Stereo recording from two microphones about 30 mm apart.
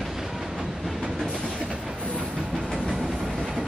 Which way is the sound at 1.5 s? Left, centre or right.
Right.